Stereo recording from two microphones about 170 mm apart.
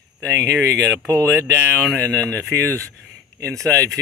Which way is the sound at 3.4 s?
20° right (ahead or behind).